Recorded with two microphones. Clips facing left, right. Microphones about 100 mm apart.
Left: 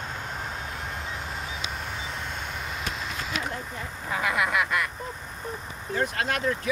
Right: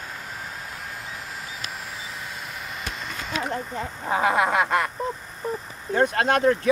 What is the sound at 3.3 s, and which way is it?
Speech, 35° right (ahead or behind).